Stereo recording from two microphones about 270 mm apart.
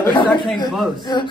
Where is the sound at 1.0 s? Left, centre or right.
Centre.